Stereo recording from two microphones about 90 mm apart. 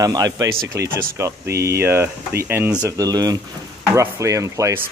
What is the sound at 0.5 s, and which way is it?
Speech, 30° right (ahead or behind).